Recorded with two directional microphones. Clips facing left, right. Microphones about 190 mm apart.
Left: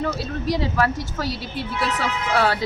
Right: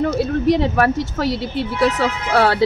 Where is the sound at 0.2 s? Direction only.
60° right (ahead or behind).